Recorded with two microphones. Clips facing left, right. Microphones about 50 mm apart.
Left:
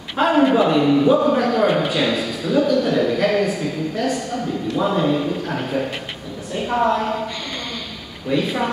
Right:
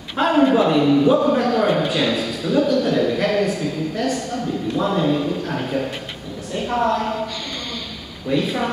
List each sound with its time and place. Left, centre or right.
0.2 s a sound: centre
0.6 s a man's voice: centre
8.3 s a woman's voice: centre